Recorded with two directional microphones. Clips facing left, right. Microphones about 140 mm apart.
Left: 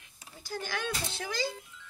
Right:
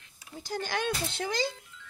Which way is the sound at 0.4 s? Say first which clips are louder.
Right 4 dB; 20° right (ahead or behind).